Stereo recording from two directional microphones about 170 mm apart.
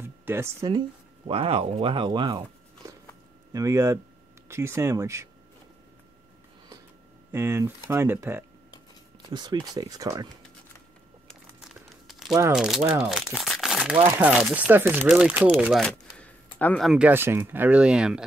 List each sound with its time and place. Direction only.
0.0 s speech: 15° right (ahead or behind)
3.5 s speech: 20° right (ahead or behind)
7.3 s speech: 15° right (ahead or behind)
9.3 s speech: 25° right (ahead or behind)
11.2 s crumpling: centre (ahead or behind)
12.5 s speech: centre (ahead or behind)
15.8 s a sound: 10° left (ahead or behind)
16.5 s speech: 5° left (ahead or behind)